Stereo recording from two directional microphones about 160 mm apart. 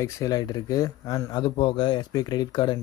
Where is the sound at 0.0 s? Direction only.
20° left (ahead or behind).